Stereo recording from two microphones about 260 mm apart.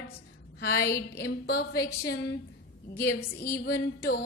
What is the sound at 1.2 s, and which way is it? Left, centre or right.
Speech, left.